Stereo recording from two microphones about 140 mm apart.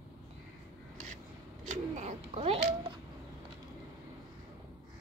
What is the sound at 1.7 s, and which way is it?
Pigeon, 55° right (ahead or behind).